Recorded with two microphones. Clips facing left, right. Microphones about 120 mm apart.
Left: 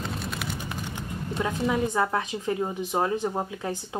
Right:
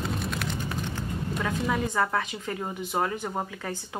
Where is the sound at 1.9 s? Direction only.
15° left (ahead or behind).